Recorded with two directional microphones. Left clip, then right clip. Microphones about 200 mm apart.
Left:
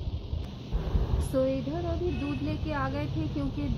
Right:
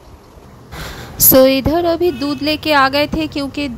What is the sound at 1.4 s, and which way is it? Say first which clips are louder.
Speech: right 17 dB; 45° right (ahead or behind).